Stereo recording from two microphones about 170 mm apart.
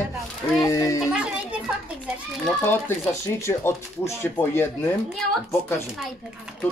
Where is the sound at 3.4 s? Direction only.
15° left (ahead or behind).